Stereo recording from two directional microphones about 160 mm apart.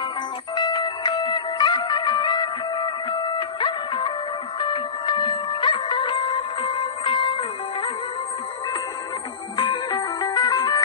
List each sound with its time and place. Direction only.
0.6 s music: 25° left (ahead or behind)
9.6 s music: 25° left (ahead or behind)